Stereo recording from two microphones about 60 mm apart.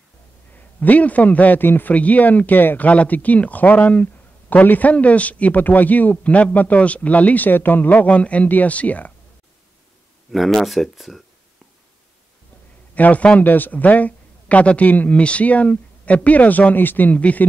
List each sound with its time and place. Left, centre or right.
0.6 s speech: left
10.3 s speech: centre
12.9 s a man's voice: left